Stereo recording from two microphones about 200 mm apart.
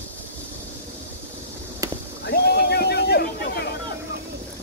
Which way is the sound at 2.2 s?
55° left (ahead or behind).